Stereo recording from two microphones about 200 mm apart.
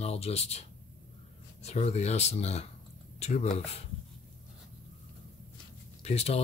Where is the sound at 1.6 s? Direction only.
30° left (ahead or behind).